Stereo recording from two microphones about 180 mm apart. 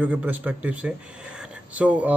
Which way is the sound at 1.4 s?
5° right (ahead or behind).